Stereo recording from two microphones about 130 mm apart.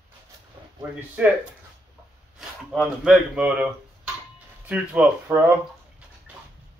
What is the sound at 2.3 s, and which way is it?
Speech, centre (ahead or behind).